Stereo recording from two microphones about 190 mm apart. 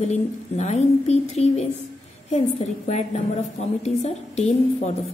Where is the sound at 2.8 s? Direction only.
35° left (ahead or behind).